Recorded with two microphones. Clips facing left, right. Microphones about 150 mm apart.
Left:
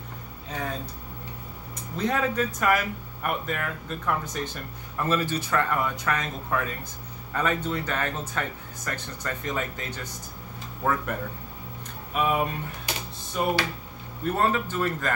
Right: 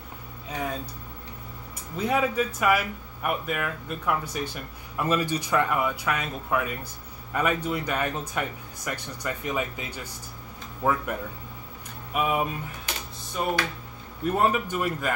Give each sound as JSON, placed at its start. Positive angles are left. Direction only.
{"t": 2.0, "sound": "speech", "side_deg": -10}
{"t": 14.2, "sound": "speech", "side_deg": -15}